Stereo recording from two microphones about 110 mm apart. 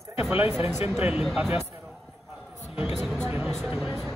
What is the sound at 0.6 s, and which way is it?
Speech, 20° right (ahead or behind).